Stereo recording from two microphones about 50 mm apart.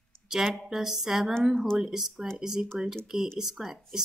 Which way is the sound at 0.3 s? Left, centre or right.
Centre.